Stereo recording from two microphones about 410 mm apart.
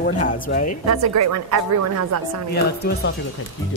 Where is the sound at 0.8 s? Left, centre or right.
Right.